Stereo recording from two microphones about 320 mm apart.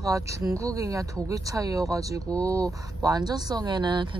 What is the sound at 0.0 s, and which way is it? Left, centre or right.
A woman's voice, centre.